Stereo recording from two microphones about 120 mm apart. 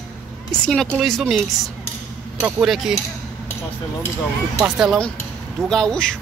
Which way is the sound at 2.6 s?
5° right (ahead or behind).